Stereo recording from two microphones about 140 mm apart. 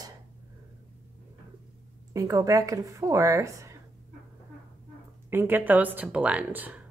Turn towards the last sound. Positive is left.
turn(degrees=-10)  # may be behind; listen again after turning